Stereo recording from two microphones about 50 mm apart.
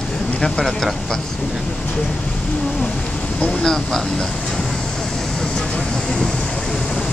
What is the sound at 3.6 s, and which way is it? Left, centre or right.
Speech, centre.